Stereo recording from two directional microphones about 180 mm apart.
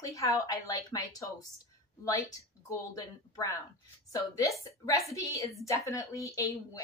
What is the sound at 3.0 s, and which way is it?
A woman's voice, 20° left (ahead or behind).